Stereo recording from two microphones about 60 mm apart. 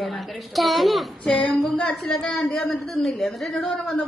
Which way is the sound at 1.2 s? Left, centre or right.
Left.